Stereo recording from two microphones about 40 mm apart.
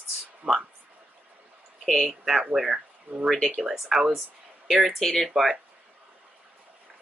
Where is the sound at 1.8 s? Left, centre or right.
Centre.